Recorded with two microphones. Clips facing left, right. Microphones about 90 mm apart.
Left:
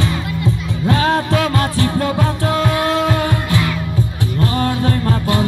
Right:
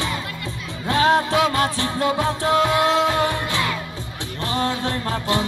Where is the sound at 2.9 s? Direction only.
50° left (ahead or behind).